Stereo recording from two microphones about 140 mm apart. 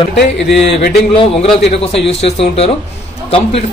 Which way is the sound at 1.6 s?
50° left (ahead or behind).